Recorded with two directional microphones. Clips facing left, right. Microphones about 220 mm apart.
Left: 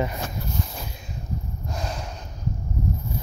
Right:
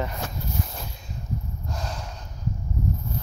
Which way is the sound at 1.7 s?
15° left (ahead or behind).